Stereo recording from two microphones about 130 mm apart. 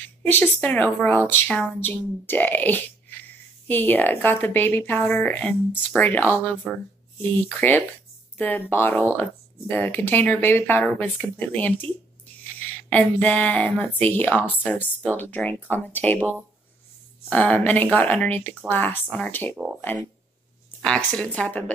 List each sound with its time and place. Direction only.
0.2 s speech: 15° left (ahead or behind)
7.4 s speech: 15° left (ahead or behind)
12.9 s speech: 10° left (ahead or behind)
17.3 s speech: 10° left (ahead or behind)